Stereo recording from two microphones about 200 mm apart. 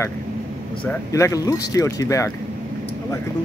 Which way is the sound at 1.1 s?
15° left (ahead or behind).